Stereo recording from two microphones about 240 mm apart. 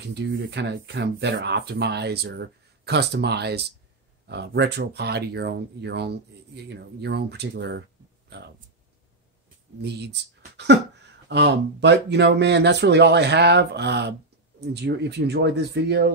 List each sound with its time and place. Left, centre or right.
0.1 s speech: right
9.8 s speech: right
11.2 s speech: right